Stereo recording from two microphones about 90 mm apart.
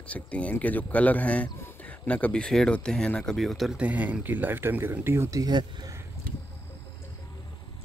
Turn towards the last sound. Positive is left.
turn(degrees=-50)  # may be behind; listen again after turning